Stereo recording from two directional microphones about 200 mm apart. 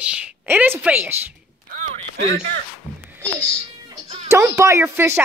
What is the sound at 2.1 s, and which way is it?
Speech, 60° right (ahead or behind).